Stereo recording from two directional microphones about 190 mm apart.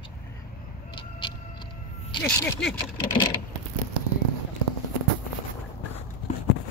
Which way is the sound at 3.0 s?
25° left (ahead or behind).